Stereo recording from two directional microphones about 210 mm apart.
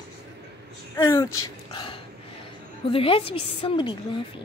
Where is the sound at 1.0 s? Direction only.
15° left (ahead or behind).